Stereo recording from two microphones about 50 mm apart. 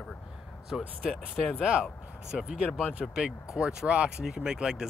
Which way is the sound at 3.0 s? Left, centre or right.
Centre.